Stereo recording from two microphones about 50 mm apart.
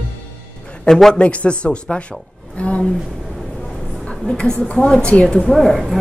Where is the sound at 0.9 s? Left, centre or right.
Centre.